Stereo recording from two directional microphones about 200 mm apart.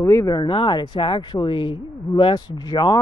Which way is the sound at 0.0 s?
15° left (ahead or behind).